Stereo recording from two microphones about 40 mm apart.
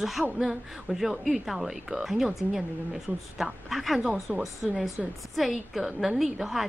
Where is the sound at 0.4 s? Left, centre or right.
Centre.